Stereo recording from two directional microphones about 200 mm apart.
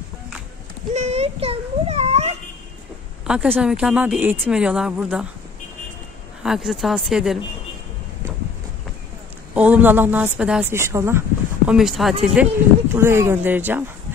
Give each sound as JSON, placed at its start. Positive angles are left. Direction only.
{"t": 0.9, "sound": "a sound", "side_deg": -35}
{"t": 3.3, "sound": "a woman's voice", "side_deg": -10}
{"t": 6.4, "sound": "speech", "side_deg": 0}
{"t": 9.5, "sound": "a woman's voice", "side_deg": -5}
{"t": 12.9, "sound": "a woman's voice", "side_deg": -10}